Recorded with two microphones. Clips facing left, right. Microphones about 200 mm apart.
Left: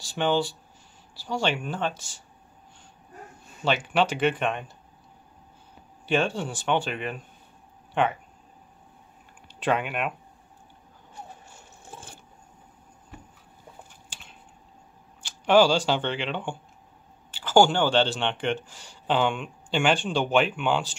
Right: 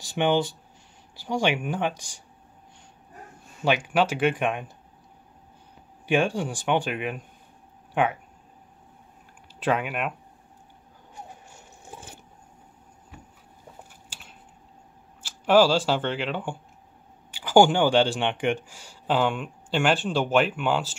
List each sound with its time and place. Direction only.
0.0 s speech: 20° right (ahead or behind)
3.6 s speech: 10° right (ahead or behind)
6.0 s speech: 10° right (ahead or behind)
9.5 s speech: 5° right (ahead or behind)
11.9 s a sound: 20° right (ahead or behind)
14.1 s a sound: 5° right (ahead or behind)
15.2 s speech: 5° right (ahead or behind)